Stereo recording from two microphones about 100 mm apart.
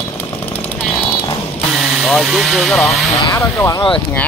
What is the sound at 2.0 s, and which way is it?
Speech, 5° right (ahead or behind).